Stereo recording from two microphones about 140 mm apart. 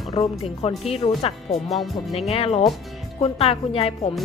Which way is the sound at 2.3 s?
45° left (ahead or behind).